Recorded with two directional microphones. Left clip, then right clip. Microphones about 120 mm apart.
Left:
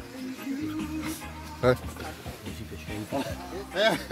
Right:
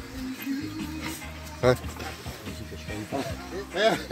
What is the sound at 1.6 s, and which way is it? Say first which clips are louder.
Speech: right 1 dB; 10° left (ahead or behind).